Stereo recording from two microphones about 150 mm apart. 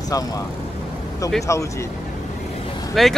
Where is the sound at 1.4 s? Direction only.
20° left (ahead or behind).